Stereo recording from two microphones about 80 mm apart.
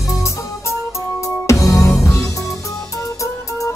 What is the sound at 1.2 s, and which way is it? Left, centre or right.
Music, left.